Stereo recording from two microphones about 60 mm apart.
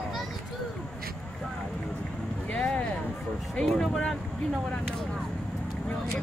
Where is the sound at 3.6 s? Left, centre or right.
Centre.